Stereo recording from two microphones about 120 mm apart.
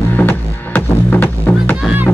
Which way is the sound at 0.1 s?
15° left (ahead or behind).